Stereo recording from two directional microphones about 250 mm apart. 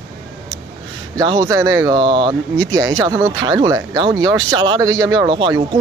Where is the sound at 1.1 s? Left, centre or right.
Centre.